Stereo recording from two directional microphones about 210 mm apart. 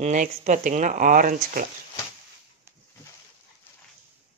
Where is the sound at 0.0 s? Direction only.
35° right (ahead or behind).